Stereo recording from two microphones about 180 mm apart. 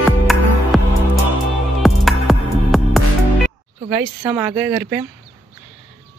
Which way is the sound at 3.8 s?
20° right (ahead or behind).